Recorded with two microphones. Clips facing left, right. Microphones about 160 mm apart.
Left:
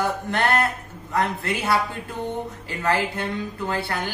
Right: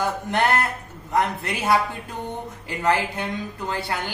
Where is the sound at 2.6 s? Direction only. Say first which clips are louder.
Right 2 dB; 15° right (ahead or behind).